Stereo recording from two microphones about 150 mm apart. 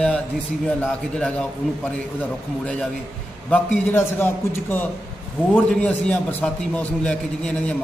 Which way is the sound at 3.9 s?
15° left (ahead or behind).